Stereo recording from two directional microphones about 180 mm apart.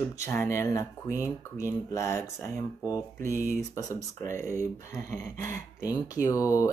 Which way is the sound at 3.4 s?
45° right (ahead or behind).